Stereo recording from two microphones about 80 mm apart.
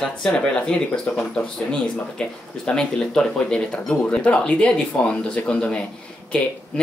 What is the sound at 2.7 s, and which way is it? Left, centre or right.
Speech, centre.